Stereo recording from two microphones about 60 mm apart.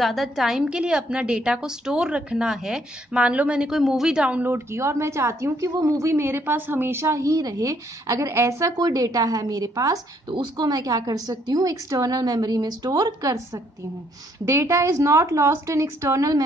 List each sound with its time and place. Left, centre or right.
0.0 s a woman's voice: centre
0.7 s a woman's voice: centre
3.7 s a woman's voice: centre
4.3 s speech: right
4.7 s a woman's voice: right
8.3 s a woman's voice: right
14.4 s a woman's voice: right